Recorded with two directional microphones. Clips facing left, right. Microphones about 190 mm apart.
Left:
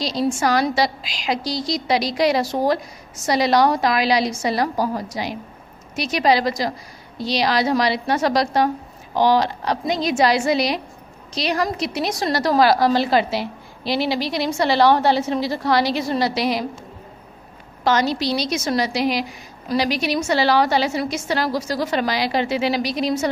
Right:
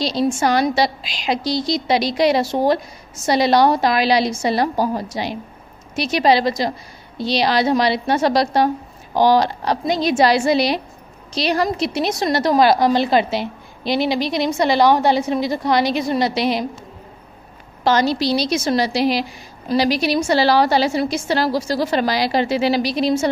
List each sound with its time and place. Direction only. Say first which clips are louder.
0.0 s a woman's voice: right 2 dB; 25° right (ahead or behind)
17.8 s a woman's voice: right 2 dB; 30° right (ahead or behind)